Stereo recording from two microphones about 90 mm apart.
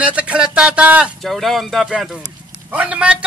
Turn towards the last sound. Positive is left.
turn(degrees=-15)  # may be behind; listen again after turning